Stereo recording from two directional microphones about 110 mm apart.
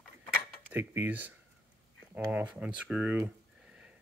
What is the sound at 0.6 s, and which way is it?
Speech, 20° right (ahead or behind).